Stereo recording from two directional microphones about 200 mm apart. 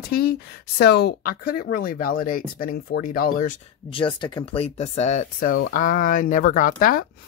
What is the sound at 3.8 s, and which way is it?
Speech, 25° left (ahead or behind).